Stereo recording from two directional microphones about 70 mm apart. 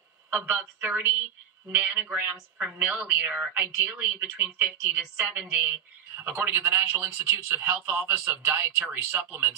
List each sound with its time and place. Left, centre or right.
0.6 s a woman's voice: right